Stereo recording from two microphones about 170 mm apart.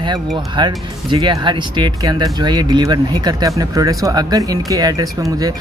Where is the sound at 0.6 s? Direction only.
25° right (ahead or behind).